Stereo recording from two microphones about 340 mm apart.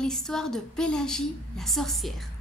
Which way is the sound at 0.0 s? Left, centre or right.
Centre.